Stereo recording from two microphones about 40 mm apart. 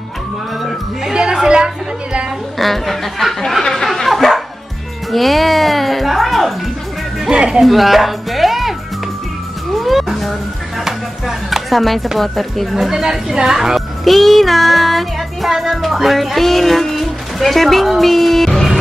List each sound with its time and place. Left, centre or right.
0.6 s music: centre
2.6 s speech: centre
5.1 s music: centre
7.2 s music: right
7.6 s music: centre
12.2 s a woman's voice: centre
12.9 s speech: centre